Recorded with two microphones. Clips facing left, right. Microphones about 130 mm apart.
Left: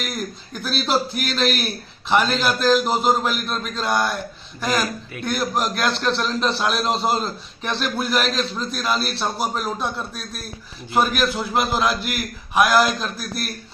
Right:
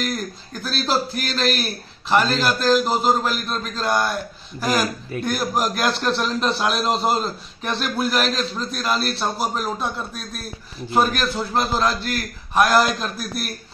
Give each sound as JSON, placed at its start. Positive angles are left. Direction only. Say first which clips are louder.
{"t": 0.6, "sound": "a man's voice", "louder": "left 1 dB", "side_deg": 0}